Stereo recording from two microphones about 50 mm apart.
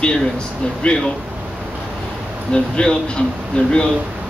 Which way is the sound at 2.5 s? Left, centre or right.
Centre.